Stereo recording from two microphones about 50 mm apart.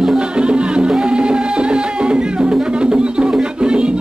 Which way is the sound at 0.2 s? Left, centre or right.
Centre.